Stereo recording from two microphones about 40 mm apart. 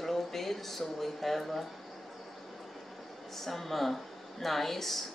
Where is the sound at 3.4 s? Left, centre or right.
Centre.